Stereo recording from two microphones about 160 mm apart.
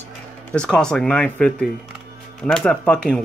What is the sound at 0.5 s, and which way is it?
Speech, 5° left (ahead or behind).